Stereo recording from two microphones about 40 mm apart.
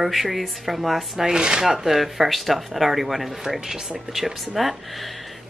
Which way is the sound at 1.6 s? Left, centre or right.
Centre.